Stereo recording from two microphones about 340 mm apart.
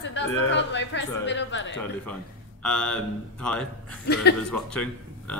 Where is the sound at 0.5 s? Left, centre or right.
Left.